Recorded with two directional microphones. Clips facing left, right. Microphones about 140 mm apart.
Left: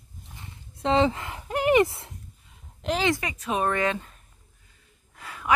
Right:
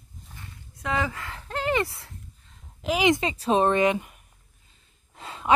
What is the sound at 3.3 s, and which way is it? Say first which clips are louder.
Speech: right 5 dB; 30° right (ahead or behind).